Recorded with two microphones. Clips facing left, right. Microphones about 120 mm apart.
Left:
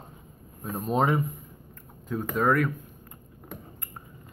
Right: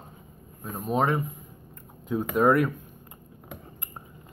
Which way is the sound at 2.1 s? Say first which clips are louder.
Right 3 dB; 15° right (ahead or behind).